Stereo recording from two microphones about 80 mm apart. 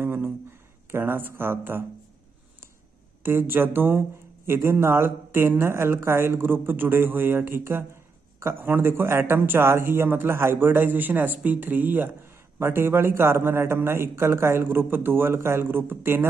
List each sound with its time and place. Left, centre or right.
0.0 s speech: right
3.2 s a man's voice: right